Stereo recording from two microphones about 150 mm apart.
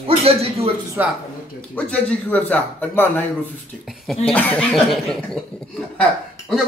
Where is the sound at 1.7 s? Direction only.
5° left (ahead or behind).